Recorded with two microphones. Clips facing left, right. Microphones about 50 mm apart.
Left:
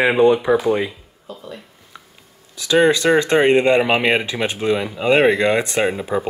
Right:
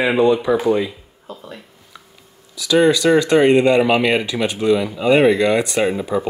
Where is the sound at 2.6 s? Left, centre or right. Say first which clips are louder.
Right 1 dB; left; by 6.3 s centre.